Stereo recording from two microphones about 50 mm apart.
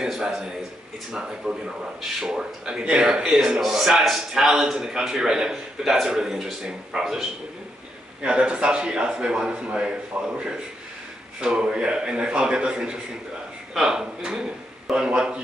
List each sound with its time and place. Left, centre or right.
0.1 s a sound: centre
1.1 s a man's voice: centre
2.8 s a man's voice: right
3.2 s a man's voice: centre
8.2 s a man's voice: right
11.6 s a man's voice: right